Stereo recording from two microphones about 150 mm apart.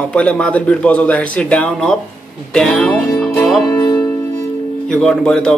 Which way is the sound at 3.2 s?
Centre (ahead or behind).